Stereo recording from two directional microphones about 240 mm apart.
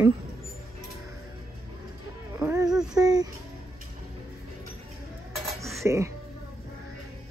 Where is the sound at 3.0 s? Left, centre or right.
Centre.